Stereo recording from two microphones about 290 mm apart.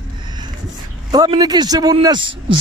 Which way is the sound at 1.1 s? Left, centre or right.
Centre.